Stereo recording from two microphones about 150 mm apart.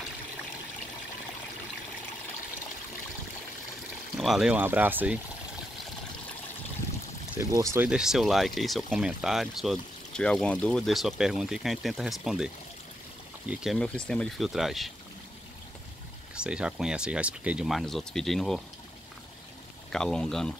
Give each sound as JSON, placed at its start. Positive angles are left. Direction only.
{"t": 4.2, "sound": "speech", "side_deg": 0}
{"t": 4.6, "sound": "speech", "side_deg": -15}
{"t": 7.3, "sound": "speech", "side_deg": -20}
{"t": 7.9, "sound": "speech", "side_deg": -5}
{"t": 13.5, "sound": "speech", "side_deg": -5}
{"t": 13.7, "sound": "speech", "side_deg": 5}
{"t": 16.3, "sound": "speech", "side_deg": -5}
{"t": 19.9, "sound": "speech", "side_deg": 5}